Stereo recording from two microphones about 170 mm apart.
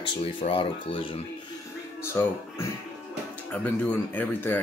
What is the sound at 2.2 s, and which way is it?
Speech, 15° left (ahead or behind).